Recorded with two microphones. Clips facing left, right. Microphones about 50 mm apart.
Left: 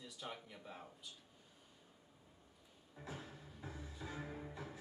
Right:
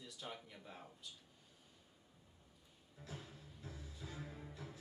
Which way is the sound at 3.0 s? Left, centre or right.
Centre.